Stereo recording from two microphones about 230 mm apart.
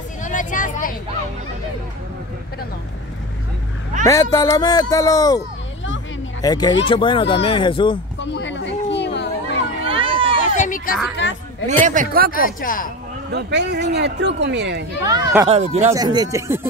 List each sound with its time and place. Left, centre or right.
0.2 s vehicle: left
4.0 s speech: centre
6.4 s speech: centre
8.2 s a sound: left
9.8 s a sound: right
10.4 s a sound: left
11.2 s speech: left
11.8 s speech: right
12.3 s speech: left
13.3 s speech: right
15.0 s speech: centre
15.9 s speech: centre